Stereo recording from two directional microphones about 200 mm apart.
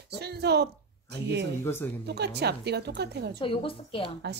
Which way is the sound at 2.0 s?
55° right (ahead or behind).